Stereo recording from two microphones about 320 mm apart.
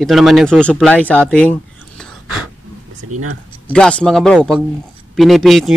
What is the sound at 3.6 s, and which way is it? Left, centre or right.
Speech, centre.